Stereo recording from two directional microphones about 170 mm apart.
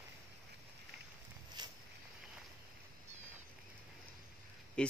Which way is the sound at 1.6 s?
25° right (ahead or behind).